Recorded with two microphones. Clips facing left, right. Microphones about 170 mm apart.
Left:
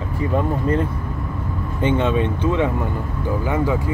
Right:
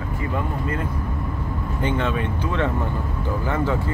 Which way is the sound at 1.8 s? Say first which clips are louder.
Left 5 dB; 20° left (ahead or behind).